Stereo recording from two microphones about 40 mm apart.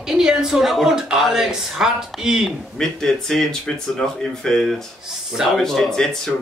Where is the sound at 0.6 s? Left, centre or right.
Centre.